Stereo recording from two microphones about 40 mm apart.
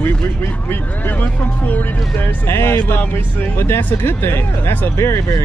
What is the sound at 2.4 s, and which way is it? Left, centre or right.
Speech, left.